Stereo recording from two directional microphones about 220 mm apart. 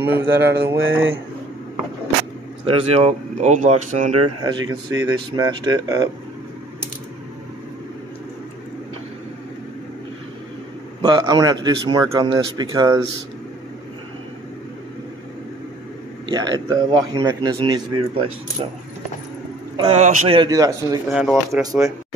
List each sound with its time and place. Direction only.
0.0 s a man's voice: 10° right (ahead or behind)
2.6 s speech: 25° right (ahead or behind)
4.6 s a man's voice: 15° right (ahead or behind)
11.0 s a man's voice: 20° right (ahead or behind)
16.3 s a man's voice: 20° right (ahead or behind)
19.8 s speech: 30° right (ahead or behind)
20.3 s a man's voice: 15° right (ahead or behind)
21.1 s speech: centre (ahead or behind)